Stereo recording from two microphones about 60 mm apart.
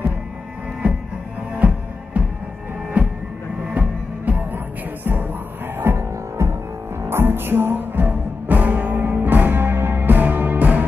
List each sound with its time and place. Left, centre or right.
0.8 s music: right
2.1 s music: right
3.0 s a sound: right
4.3 s music: right
5.9 s music: right